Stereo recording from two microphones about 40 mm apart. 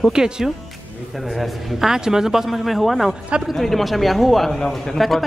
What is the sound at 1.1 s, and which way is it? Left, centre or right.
Speech, centre.